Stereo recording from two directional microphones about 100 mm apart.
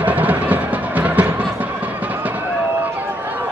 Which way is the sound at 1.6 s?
15° right (ahead or behind).